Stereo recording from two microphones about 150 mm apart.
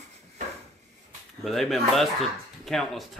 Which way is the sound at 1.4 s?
Centre (ahead or behind).